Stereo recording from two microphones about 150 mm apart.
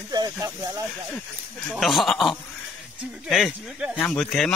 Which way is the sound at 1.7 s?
Centre (ahead or behind).